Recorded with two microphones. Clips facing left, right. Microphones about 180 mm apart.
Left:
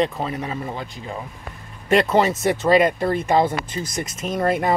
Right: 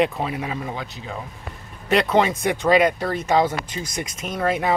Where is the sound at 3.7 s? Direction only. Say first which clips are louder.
Left 2 dB; 50° left (ahead or behind).